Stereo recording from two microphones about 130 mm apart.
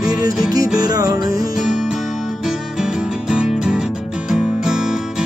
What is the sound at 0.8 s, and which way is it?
Music, 30° right (ahead or behind).